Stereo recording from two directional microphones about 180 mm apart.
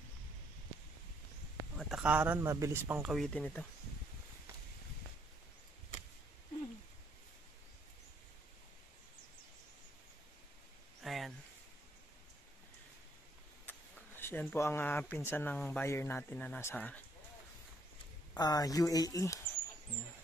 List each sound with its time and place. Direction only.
1.8 s speech: centre (ahead or behind)
3.1 s speech: 5° left (ahead or behind)
11.0 s a sound: centre (ahead or behind)
13.7 s speech: 10° left (ahead or behind)
18.3 s speech: 20° left (ahead or behind)